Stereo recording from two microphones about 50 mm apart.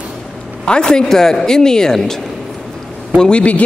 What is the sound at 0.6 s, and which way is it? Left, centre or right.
Speech, centre.